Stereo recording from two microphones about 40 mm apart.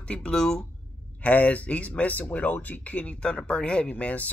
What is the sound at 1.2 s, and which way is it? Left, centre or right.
Speech, left.